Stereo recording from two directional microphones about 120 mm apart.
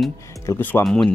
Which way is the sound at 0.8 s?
5° left (ahead or behind).